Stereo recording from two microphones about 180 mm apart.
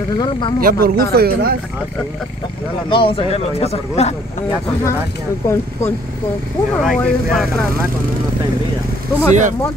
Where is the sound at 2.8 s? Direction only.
30° left (ahead or behind).